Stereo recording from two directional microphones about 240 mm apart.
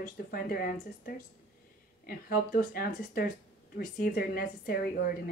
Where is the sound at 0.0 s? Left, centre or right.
Left.